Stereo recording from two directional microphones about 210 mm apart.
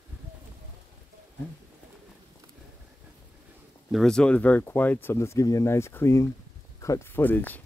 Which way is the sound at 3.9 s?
5° left (ahead or behind).